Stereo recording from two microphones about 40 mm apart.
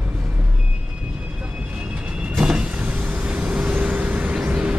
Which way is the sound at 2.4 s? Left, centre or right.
Right.